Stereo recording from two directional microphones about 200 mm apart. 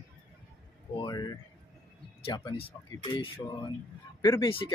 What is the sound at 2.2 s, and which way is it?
Speech, 25° left (ahead or behind).